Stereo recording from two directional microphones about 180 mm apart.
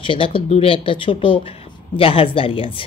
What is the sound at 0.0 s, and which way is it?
A woman's voice, 30° left (ahead or behind).